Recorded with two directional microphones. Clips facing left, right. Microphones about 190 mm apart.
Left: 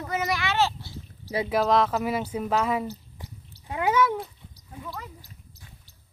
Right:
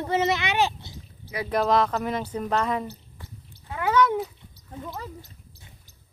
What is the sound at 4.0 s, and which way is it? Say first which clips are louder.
Cat: right 5 dB; centre (ahead or behind).